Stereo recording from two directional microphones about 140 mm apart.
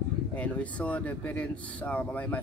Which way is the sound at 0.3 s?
10° left (ahead or behind).